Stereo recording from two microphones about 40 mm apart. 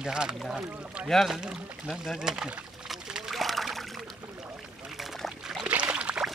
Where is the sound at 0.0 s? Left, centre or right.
Centre.